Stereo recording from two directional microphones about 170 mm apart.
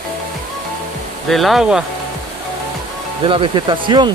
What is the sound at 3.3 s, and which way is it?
Speech, 30° right (ahead or behind).